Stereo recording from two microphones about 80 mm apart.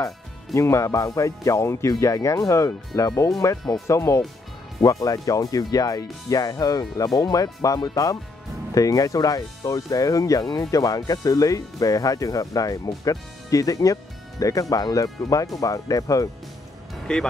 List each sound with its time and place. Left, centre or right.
0.6 s speech: left
2.9 s speech: left
3.3 s speech: left
3.8 s speech: left
5.0 s speech: left
17.1 s speech: centre